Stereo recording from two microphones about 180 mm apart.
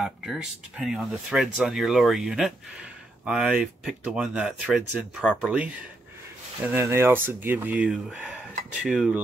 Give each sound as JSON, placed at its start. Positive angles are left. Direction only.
{"t": 0.0, "sound": "speech", "side_deg": -5}
{"t": 6.6, "sound": "speech", "side_deg": -10}